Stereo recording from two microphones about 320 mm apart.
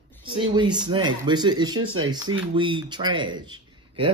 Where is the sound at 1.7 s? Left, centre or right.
Right.